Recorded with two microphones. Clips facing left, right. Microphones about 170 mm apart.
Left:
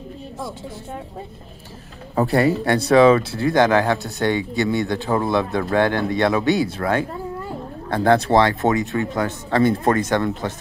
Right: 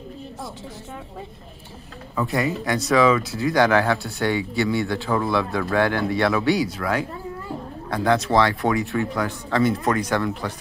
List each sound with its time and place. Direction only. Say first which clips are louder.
2.1 s speech: left 6 dB; 35° left (ahead or behind)